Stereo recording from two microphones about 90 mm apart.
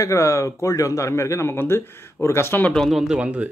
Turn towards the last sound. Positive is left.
turn(degrees=-15)  # may be behind; listen again after turning